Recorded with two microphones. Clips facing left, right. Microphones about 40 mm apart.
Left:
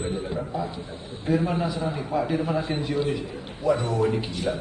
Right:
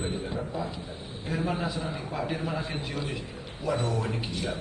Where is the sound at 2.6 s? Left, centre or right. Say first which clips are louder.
Left 7 dB; left.